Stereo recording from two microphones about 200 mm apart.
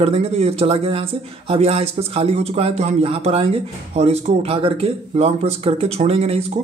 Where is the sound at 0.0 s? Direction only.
30° right (ahead or behind).